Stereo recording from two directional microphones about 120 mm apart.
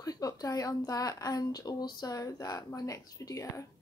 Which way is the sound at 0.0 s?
30° left (ahead or behind).